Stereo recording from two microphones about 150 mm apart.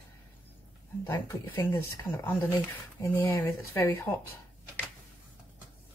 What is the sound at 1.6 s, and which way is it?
Speech, 15° left (ahead or behind).